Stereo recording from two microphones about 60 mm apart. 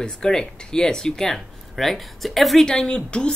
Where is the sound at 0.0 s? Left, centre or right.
Centre.